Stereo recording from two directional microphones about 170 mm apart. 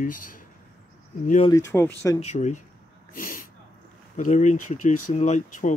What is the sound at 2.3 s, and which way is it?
Speech, 45° left (ahead or behind).